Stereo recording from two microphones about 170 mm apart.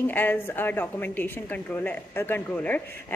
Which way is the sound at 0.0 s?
10° left (ahead or behind).